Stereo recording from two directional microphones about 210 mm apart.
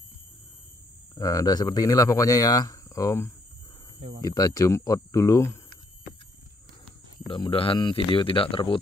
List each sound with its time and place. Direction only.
1.1 s speech: 15° left (ahead or behind)
7.2 s speech: 25° left (ahead or behind)